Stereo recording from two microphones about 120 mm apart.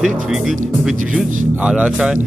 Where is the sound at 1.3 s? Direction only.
90° right.